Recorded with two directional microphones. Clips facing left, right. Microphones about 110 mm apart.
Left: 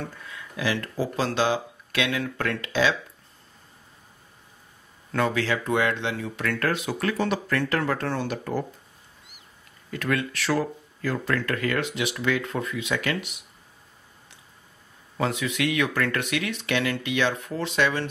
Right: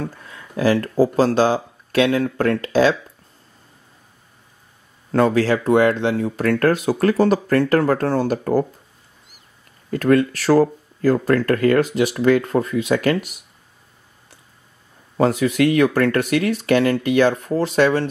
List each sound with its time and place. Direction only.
0.2 s speech: 40° right (ahead or behind)
5.1 s speech: 40° right (ahead or behind)
9.8 s speech: 40° right (ahead or behind)
15.1 s speech: 40° right (ahead or behind)